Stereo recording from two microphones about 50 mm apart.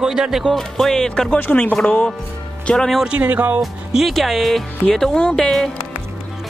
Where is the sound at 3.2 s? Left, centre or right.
Right.